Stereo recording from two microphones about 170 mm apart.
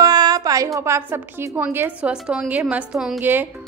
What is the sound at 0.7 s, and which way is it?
A woman's voice, 15° right (ahead or behind).